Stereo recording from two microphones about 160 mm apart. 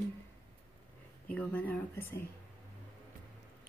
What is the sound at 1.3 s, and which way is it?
Speech, 10° left (ahead or behind).